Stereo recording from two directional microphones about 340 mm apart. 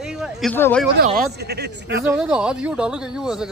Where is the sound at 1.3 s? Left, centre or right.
Right.